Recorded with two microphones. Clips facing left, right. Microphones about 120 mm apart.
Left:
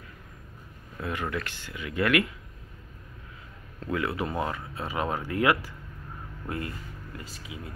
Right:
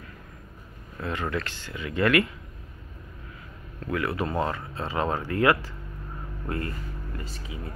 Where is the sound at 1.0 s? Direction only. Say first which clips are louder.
Right 2 dB; 10° left (ahead or behind).